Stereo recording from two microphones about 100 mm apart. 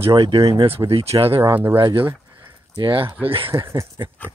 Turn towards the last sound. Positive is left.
turn(degrees=-30)  # may be behind; listen again after turning